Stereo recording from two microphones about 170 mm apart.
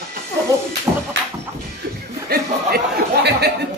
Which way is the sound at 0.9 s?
15° right (ahead or behind).